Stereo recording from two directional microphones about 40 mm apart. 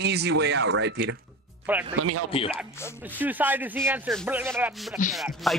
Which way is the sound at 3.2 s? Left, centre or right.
Right.